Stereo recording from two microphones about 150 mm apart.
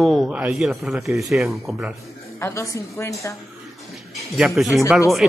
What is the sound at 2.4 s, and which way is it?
Speech, 20° left (ahead or behind).